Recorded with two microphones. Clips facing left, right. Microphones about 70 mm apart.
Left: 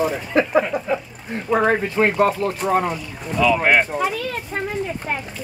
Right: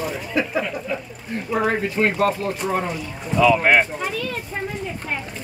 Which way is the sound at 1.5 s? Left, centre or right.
Left.